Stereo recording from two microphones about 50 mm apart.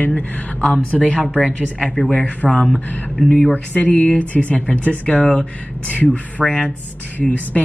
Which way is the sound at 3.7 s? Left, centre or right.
Left.